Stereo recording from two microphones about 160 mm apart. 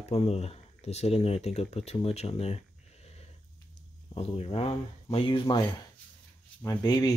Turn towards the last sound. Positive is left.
turn(degrees=25)  # may be behind; listen again after turning